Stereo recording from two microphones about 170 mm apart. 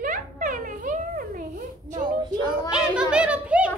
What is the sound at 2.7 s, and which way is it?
Speech, 5° right (ahead or behind).